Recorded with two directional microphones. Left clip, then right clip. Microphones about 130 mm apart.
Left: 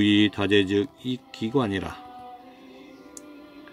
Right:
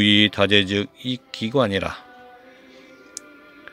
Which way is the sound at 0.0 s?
45° right (ahead or behind).